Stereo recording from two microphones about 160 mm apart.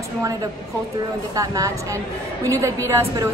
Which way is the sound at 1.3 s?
20° right (ahead or behind).